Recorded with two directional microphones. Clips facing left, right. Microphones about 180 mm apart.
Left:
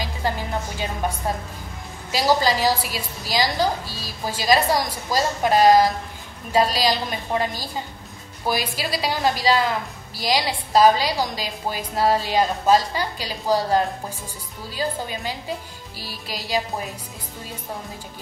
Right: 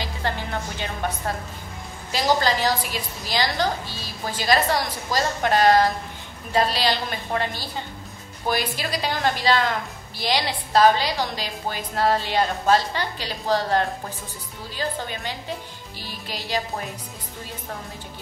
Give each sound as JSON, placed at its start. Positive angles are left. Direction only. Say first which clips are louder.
{"t": 0.7, "sound": "a woman's voice", "louder": "left 2 dB", "side_deg": 10}
{"t": 3.8, "sound": "music", "louder": "left 1 dB", "side_deg": 40}
{"t": 4.3, "sound": "a woman's voice", "louder": "left 2 dB", "side_deg": 10}
{"t": 8.5, "sound": "a woman's voice", "louder": "left 1 dB", "side_deg": 10}
{"t": 16.0, "sound": "music", "louder": "left 1 dB", "side_deg": 40}